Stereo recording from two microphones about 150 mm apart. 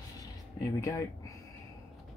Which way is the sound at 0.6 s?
20° left (ahead or behind).